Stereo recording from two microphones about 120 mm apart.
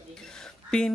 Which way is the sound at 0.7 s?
5° left (ahead or behind).